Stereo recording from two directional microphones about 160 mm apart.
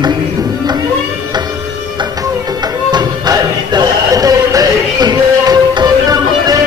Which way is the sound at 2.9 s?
25° right (ahead or behind).